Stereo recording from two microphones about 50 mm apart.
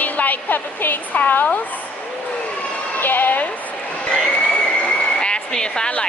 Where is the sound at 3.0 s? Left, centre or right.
Left.